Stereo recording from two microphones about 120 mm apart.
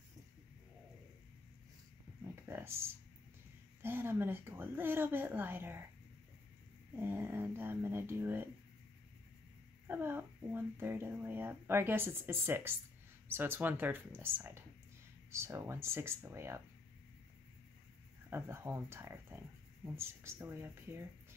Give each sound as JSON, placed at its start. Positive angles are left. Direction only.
{"t": 2.4, "sound": "a sound", "side_deg": -20}
{"t": 3.8, "sound": "a woman's voice", "side_deg": -20}
{"t": 7.0, "sound": "speech", "side_deg": -20}
{"t": 9.8, "sound": "a woman's voice", "side_deg": -20}
{"t": 18.3, "sound": "speech", "side_deg": -20}